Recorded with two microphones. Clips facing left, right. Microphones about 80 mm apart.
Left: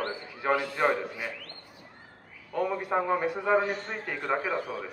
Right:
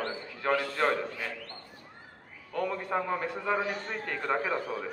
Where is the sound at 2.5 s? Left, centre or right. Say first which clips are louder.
Left 3 dB; centre.